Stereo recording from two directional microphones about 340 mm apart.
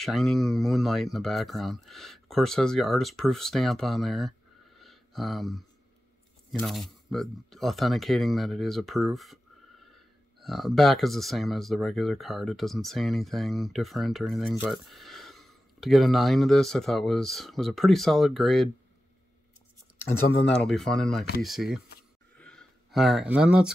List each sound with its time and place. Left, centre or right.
0.0 s speech: centre
4.7 s a sound: centre
6.6 s speech: centre
10.4 s speech: centre
20.0 s speech: left
20.4 s speech: centre
22.4 s a sound: centre